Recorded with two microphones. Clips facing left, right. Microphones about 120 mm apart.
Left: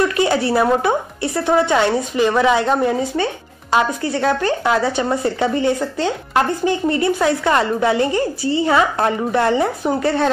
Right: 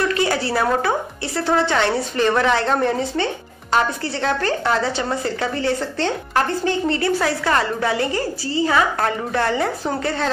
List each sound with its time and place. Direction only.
0.1 s speech: 20° left (ahead or behind)